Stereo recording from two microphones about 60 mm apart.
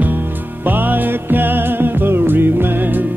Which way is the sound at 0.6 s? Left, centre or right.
Right.